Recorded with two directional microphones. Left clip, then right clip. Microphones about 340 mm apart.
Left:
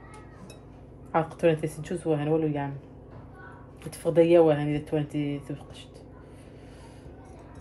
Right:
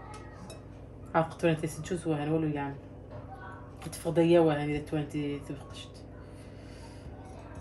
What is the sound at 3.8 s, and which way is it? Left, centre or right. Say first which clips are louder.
Speech: left 5 dB; centre.